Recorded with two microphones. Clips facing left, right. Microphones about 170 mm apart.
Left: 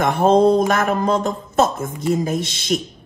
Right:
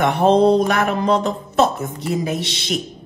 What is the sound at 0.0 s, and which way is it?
A man's voice, 45° left (ahead or behind).